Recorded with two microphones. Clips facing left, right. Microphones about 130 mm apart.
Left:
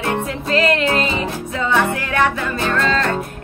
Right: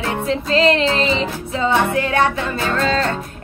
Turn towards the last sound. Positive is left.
turn(degrees=-30)  # may be behind; listen again after turning